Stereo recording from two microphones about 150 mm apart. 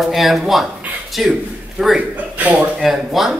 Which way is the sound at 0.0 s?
Centre (ahead or behind).